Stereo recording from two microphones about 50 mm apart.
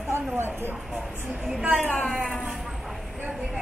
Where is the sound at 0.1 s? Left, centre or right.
Right.